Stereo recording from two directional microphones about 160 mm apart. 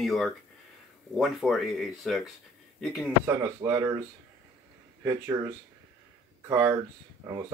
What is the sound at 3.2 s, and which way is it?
Speech, 15° right (ahead or behind).